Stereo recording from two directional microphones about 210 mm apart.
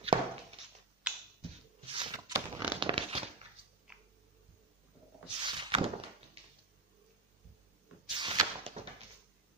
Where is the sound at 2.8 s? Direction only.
25° right (ahead or behind).